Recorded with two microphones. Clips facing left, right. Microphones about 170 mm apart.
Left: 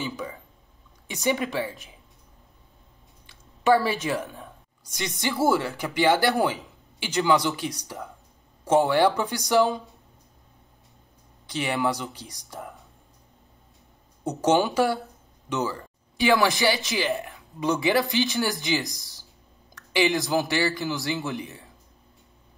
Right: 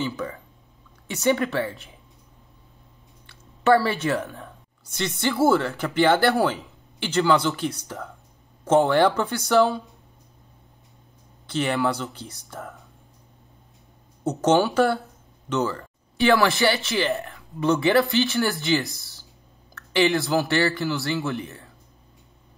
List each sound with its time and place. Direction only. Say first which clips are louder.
0.0 s speech: right 4 dB; 15° left (ahead or behind)
3.3 s a woman's voice: right 2 dB; 15° left (ahead or behind)
11.4 s speech: right 3 dB; 15° left (ahead or behind)
14.2 s speech: right 2 dB; 10° left (ahead or behind)